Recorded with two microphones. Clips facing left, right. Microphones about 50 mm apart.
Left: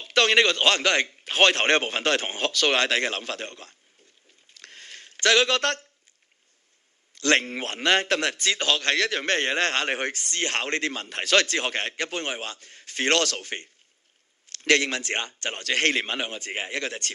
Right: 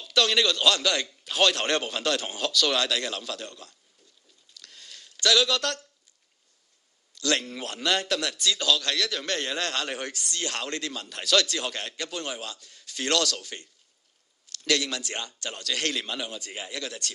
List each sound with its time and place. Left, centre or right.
0.0 s a man's voice: left
4.6 s a sound: left
7.2 s a man's voice: left